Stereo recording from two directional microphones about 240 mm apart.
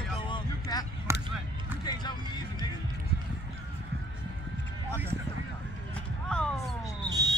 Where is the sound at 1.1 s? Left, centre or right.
Centre.